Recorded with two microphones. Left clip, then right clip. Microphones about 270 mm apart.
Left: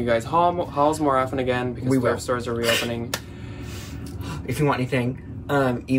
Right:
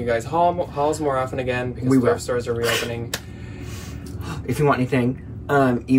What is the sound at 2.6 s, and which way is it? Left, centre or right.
Speech, centre.